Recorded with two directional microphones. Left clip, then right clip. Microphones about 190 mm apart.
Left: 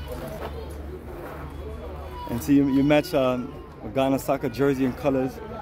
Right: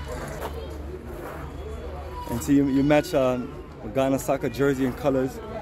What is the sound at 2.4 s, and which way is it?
A man's voice, 15° left (ahead or behind).